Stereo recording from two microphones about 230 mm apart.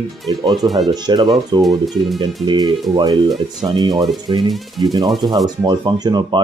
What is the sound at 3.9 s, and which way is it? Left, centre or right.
Speech, centre.